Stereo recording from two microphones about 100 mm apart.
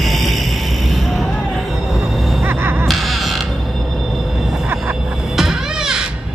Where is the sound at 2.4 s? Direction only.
20° right (ahead or behind).